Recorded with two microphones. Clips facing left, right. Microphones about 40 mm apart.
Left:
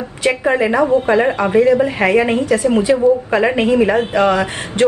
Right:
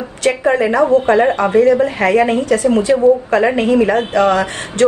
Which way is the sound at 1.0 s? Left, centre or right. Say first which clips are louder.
Right 2 dB; centre.